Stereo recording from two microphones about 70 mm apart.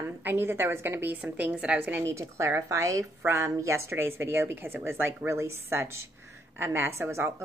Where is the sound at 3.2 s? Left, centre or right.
Right.